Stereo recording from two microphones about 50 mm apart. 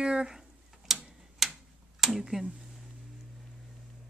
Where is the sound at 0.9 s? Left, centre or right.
Centre.